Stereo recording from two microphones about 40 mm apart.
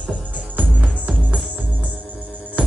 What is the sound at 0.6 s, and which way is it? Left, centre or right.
Music, right.